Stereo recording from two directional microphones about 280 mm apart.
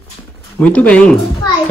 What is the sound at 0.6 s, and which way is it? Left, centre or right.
Speech, centre.